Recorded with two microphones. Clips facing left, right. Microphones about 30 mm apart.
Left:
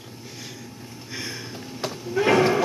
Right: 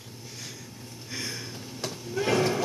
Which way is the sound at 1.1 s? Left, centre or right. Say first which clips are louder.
Left 2 dB; centre.